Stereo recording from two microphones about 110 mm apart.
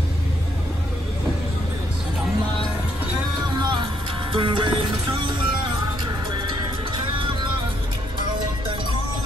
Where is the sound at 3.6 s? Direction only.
45° right (ahead or behind).